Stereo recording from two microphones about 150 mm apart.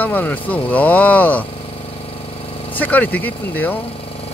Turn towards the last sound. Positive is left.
turn(degrees=10)  # may be behind; listen again after turning